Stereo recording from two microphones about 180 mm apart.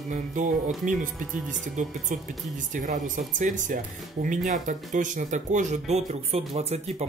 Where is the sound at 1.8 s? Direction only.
45° right (ahead or behind).